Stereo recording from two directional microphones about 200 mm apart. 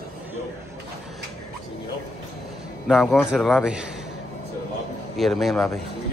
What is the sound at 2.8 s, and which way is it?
A man's voice, centre (ahead or behind).